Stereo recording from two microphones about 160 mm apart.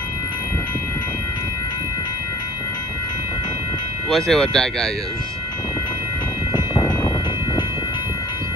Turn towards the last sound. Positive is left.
turn(degrees=25)  # may be behind; listen again after turning